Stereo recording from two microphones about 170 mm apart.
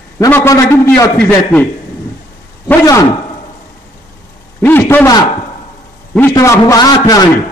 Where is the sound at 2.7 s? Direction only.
20° left (ahead or behind).